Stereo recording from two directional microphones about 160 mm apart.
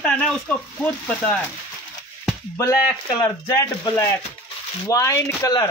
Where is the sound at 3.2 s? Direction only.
20° left (ahead or behind).